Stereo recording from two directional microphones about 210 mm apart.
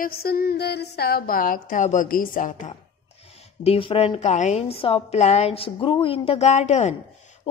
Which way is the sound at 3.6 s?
25° left (ahead or behind).